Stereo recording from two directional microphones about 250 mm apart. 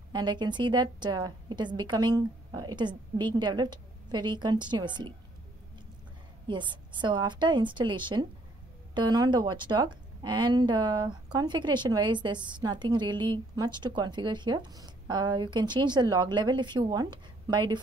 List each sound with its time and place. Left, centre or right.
0.1 s a woman's voice: centre
6.4 s a woman's voice: centre